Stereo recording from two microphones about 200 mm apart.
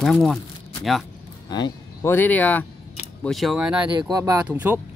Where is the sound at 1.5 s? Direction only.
15° left (ahead or behind); by 3.8 s 5° right (ahead or behind).